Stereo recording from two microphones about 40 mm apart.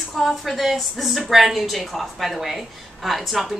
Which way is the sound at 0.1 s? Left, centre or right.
Centre.